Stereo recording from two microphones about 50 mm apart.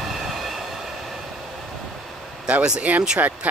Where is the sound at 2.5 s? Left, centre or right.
Right.